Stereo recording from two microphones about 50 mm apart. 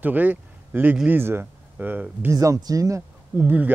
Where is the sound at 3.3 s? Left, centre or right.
Right.